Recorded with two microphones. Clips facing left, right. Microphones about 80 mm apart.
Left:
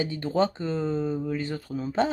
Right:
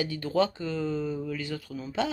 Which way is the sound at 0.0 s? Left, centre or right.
Left.